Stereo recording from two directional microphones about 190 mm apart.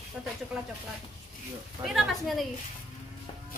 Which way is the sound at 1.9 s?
Centre (ahead or behind).